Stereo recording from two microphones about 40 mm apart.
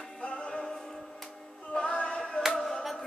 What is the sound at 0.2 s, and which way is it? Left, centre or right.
Music, left.